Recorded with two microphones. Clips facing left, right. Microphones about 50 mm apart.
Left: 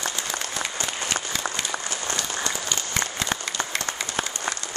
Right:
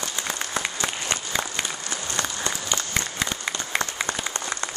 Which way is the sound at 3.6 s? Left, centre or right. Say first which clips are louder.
Left 5 dB; left.